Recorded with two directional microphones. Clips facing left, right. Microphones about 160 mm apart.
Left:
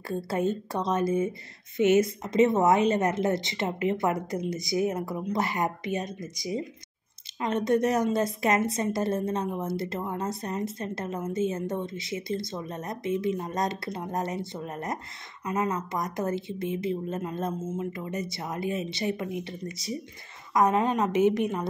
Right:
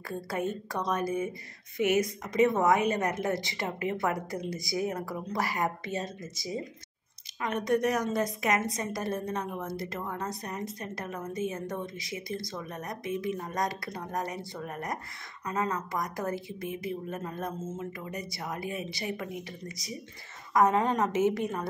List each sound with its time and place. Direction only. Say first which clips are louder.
0.3 s a woman's voice: left 4 dB; 25° left (ahead or behind)
7.3 s a woman's voice: left 3 dB; 25° left (ahead or behind)